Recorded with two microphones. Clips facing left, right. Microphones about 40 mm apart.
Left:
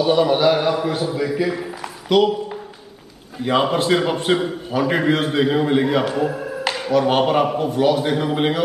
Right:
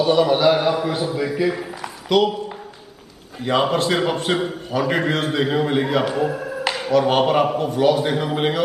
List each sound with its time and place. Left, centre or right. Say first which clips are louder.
0.0 s a man's voice: even; centre
3.3 s a man's voice: left 1 dB; centre